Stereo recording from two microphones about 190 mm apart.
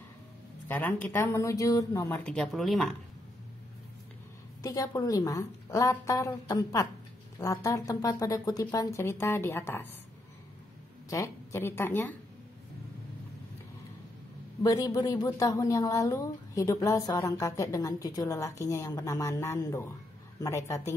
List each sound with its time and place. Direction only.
0.7 s a woman's voice: 10° left (ahead or behind)
4.6 s a woman's voice: 20° left (ahead or behind)
11.1 s a woman's voice: 15° left (ahead or behind)
14.6 s a man's voice: 20° left (ahead or behind)